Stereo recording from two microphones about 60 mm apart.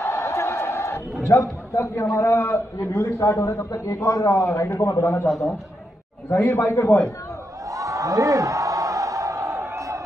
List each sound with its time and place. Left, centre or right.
0.0 s crowd: left
1.2 s a man's voice: left
6.3 s a man's voice: left
7.7 s a sound: right